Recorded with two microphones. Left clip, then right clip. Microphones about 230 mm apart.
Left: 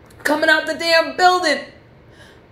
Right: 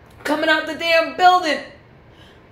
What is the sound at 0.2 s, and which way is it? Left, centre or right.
Speech, left.